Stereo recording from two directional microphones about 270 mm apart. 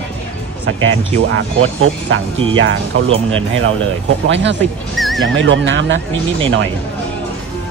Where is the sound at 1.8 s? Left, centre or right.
Right.